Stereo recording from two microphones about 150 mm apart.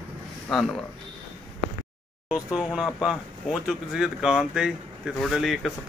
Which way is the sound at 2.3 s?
5° right (ahead or behind).